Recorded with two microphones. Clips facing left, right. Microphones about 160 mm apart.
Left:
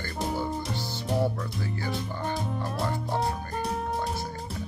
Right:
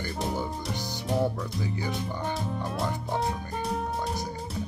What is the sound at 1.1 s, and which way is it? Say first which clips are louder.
Music: even; centre (ahead or behind).